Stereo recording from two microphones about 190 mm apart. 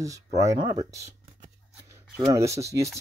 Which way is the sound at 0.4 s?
20° right (ahead or behind).